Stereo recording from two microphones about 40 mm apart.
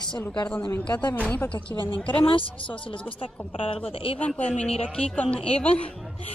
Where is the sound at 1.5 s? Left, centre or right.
Left.